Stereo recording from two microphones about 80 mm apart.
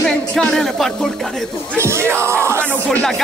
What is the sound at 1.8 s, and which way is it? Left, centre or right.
Speech, right.